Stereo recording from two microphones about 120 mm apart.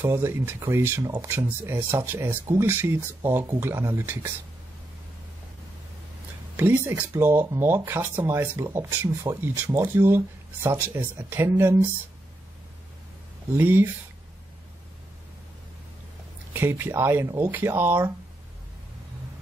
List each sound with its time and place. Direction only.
0.0 s speech: 20° right (ahead or behind)
6.5 s speech: 20° right (ahead or behind)
13.6 s speech: 15° right (ahead or behind)
16.5 s speech: 20° right (ahead or behind)